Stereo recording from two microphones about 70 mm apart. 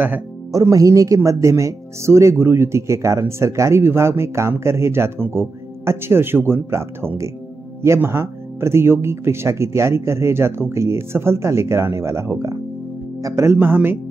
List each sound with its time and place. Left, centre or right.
0.5 s speech: right
13.6 s speech: right